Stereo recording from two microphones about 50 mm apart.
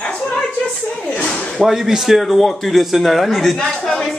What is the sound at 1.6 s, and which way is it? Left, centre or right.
Speech, centre.